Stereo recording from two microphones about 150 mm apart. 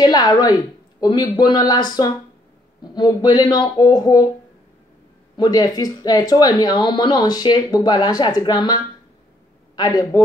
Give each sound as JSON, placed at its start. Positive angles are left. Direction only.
{"t": 0.0, "sound": "speech", "side_deg": 25}
{"t": 5.4, "sound": "speech", "side_deg": 25}
{"t": 9.8, "sound": "speech", "side_deg": 25}